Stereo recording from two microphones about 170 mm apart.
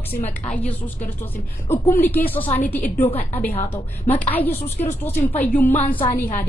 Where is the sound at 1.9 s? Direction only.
10° left (ahead or behind).